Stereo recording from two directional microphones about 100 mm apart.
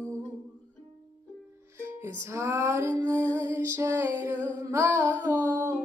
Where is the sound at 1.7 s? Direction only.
25° right (ahead or behind).